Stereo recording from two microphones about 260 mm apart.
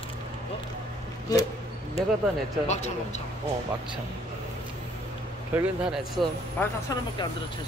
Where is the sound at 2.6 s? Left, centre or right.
Left.